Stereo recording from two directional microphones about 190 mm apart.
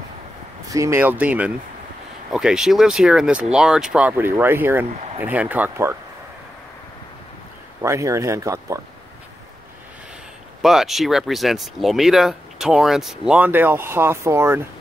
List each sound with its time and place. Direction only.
0.7 s speech: 15° right (ahead or behind)
7.8 s speech: 15° right (ahead or behind)
10.6 s speech: centre (ahead or behind)